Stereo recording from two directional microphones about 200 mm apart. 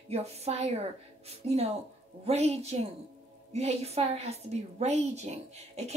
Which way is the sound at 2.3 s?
30° right (ahead or behind).